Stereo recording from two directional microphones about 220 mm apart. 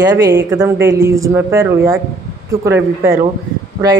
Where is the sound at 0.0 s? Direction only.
15° right (ahead or behind).